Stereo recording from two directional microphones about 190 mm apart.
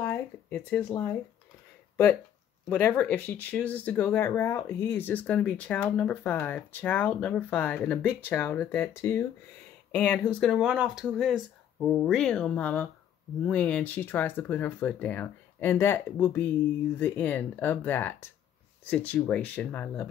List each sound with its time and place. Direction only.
0.0 s speech: 10° left (ahead or behind)
2.7 s speech: 5° left (ahead or behind)